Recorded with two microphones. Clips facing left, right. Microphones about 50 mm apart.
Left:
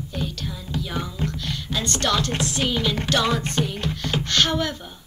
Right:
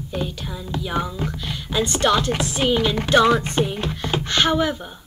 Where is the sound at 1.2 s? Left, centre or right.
Centre.